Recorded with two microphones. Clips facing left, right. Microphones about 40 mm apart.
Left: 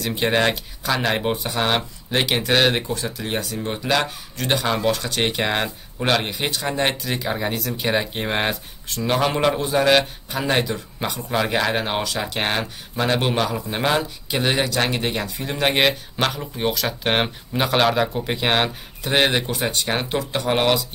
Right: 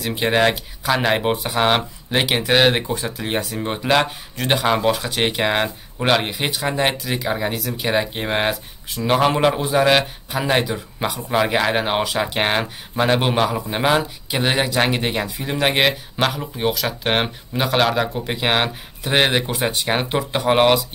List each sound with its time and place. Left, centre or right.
0.0 s a man's voice: centre